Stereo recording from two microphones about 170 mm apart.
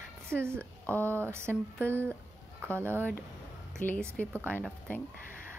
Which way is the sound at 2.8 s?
15° right (ahead or behind).